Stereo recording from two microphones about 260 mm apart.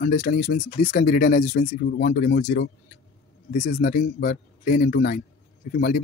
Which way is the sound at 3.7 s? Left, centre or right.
Left.